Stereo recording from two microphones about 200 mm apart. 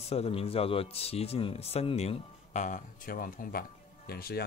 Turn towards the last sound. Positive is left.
turn(degrees=50)  # may be behind; listen again after turning